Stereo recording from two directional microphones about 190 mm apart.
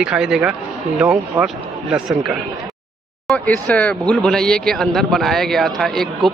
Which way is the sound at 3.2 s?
5° left (ahead or behind).